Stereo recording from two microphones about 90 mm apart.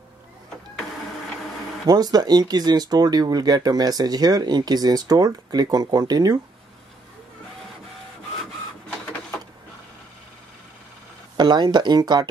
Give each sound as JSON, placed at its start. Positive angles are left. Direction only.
{"t": 1.9, "sound": "speech", "side_deg": -45}
{"t": 11.3, "sound": "speech", "side_deg": -55}